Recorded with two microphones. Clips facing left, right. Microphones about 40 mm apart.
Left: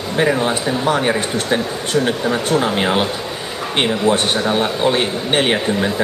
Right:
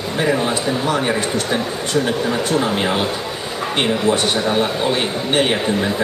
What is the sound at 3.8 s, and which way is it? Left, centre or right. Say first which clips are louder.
Speech: left 1 dB; left.